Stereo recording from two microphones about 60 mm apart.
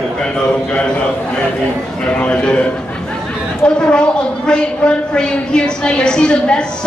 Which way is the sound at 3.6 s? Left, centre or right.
Centre.